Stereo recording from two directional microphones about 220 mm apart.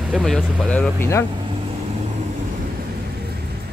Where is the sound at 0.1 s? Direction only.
Centre (ahead or behind).